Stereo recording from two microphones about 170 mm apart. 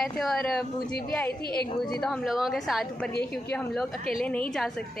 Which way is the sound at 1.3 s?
65° left (ahead or behind).